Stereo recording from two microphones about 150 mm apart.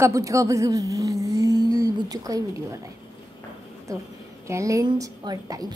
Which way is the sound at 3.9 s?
20° right (ahead or behind).